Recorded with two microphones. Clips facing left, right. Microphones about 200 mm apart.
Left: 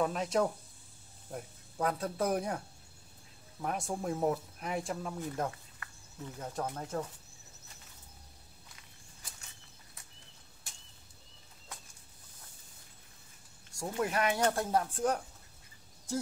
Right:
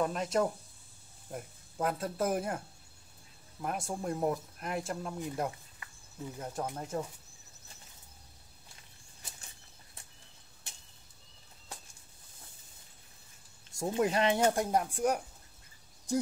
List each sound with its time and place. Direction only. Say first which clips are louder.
0.0 s speech: even; centre (ahead or behind)
3.6 s speech: even; centre (ahead or behind)
5.2 s speech: right 1 dB; 10° right (ahead or behind)
13.7 s speech: right 4 dB; 20° right (ahead or behind)